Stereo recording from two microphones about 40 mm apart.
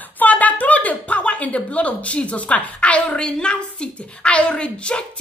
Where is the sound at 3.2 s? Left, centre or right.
Left.